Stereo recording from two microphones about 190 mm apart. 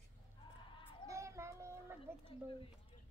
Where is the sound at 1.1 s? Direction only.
15° right (ahead or behind).